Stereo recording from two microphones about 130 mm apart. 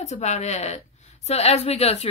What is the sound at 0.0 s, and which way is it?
A woman's voice, 60° left (ahead or behind).